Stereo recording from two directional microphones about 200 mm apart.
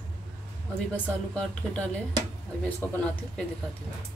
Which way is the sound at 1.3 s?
5° left (ahead or behind).